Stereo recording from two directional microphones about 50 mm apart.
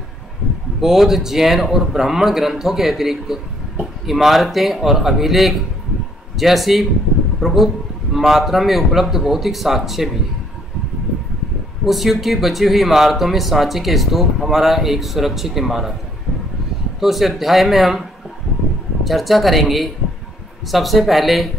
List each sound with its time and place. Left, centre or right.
0.7 s a man's voice: centre
11.8 s speech: centre
17.0 s speech: centre
19.0 s speech: centre